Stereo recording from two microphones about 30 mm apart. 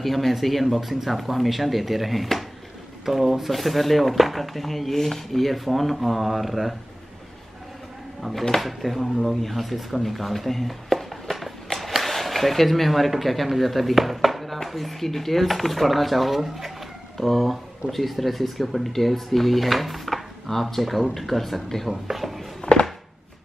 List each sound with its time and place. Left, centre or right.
0.0 s speech: centre
8.3 s speech: centre
11.4 s a sound: centre
13.2 s speech: centre
16.3 s speech: centre
21.8 s speech: centre
22.6 s a sound: left